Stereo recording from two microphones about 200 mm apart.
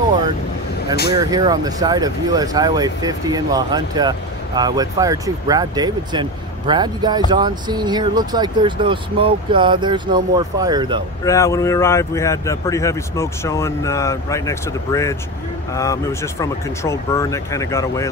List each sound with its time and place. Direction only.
0.9 s speech: 55° left (ahead or behind)
1.2 s speech: 20° right (ahead or behind)
11.2 s speech: 15° left (ahead or behind)